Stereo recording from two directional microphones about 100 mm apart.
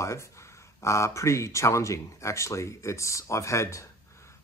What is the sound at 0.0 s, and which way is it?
Speech, 30° left (ahead or behind).